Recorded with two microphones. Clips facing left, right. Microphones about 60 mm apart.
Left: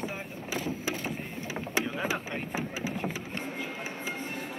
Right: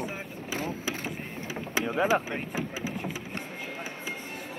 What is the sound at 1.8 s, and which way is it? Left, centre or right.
Speech, right.